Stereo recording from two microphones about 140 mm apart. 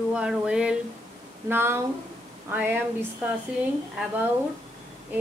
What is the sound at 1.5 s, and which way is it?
A woman's voice, 15° right (ahead or behind).